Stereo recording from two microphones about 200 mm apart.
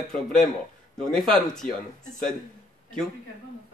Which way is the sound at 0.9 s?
5° left (ahead or behind).